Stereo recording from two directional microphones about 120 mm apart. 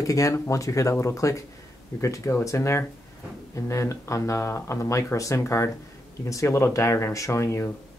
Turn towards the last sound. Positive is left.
turn(degrees=25)  # may be behind; listen again after turning